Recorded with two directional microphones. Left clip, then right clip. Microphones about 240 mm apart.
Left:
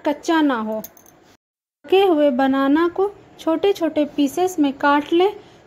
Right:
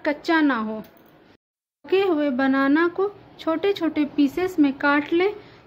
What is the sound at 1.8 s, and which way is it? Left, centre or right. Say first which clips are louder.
Speech: left 6 dB; centre.